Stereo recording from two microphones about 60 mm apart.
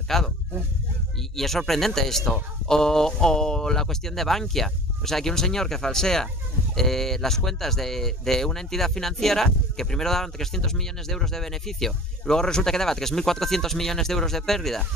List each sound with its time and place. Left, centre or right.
0.1 s speech: centre
1.3 s speech: centre